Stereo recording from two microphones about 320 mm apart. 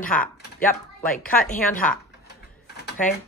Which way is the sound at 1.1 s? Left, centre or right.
Left.